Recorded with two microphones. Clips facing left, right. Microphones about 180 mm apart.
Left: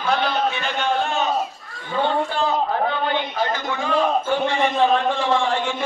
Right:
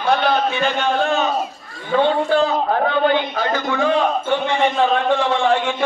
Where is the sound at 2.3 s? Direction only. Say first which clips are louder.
Right 5 dB; 90° right.